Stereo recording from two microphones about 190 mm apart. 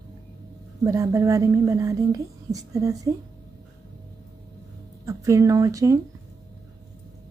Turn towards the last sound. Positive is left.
turn(degrees=-20)  # may be behind; listen again after turning